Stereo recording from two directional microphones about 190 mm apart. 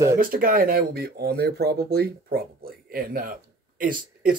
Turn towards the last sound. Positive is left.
turn(degrees=-50)  # may be behind; listen again after turning